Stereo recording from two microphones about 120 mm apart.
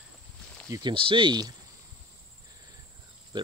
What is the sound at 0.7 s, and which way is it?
Speech, 35° right (ahead or behind).